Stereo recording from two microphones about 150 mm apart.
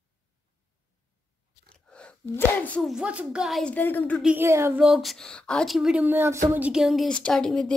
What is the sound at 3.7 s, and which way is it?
Speech, 15° left (ahead or behind).